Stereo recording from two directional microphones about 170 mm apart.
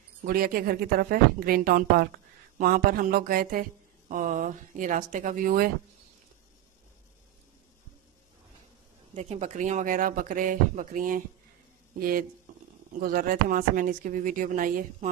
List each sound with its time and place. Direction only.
0.2 s speech: 60° right (ahead or behind)
9.1 s speech: 40° right (ahead or behind); by 12.3 s 60° right (ahead or behind)
12.5 s a sound: 50° right (ahead or behind)
13.0 s speech: 60° right (ahead or behind)